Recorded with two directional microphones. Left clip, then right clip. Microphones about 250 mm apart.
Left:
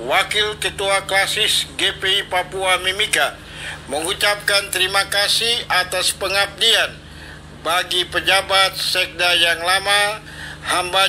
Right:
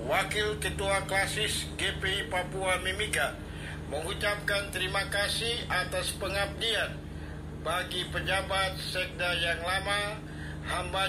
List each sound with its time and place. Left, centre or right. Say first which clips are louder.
0.1 s a man's voice: left 11 dB; left